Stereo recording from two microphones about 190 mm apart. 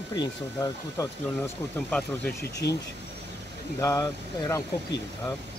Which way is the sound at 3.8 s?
15° left (ahead or behind).